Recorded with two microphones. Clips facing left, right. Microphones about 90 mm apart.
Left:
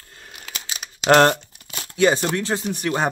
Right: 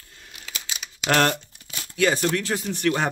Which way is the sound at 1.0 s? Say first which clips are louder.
Left 7 dB; 30° left (ahead or behind).